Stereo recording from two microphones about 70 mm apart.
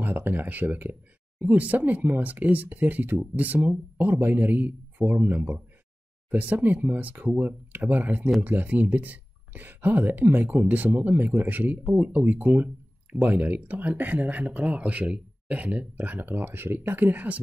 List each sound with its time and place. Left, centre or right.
0.0 s speech: right